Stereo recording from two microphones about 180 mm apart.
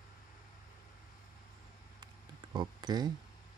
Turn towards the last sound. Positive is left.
turn(degrees=-25)  # may be behind; listen again after turning